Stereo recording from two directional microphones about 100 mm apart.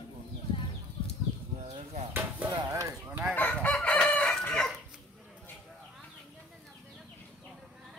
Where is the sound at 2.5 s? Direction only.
40° right (ahead or behind).